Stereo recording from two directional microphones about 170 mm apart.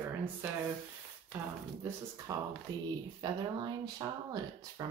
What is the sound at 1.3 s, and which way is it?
Speech, 10° right (ahead or behind).